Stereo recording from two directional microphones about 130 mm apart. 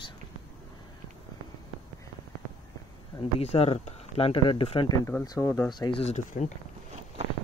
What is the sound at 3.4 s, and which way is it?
Speech, 55° left (ahead or behind).